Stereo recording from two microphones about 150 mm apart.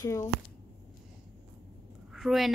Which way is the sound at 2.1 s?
Centre (ahead or behind).